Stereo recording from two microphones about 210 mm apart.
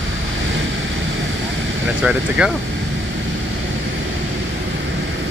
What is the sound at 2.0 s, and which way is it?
Speech, 5° right (ahead or behind).